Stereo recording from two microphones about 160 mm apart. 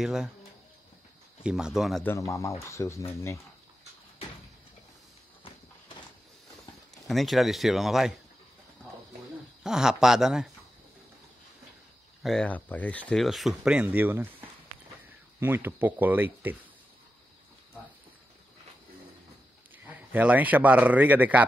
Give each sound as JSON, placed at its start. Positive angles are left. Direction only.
{"t": 0.0, "sound": "speech", "side_deg": -5}
{"t": 1.4, "sound": "speech", "side_deg": -5}
{"t": 2.0, "sound": "speech", "side_deg": 20}
{"t": 7.1, "sound": "speech", "side_deg": 0}
{"t": 9.6, "sound": "speech", "side_deg": -5}
{"t": 12.2, "sound": "speech", "side_deg": 5}
{"t": 19.8, "sound": "speech", "side_deg": -10}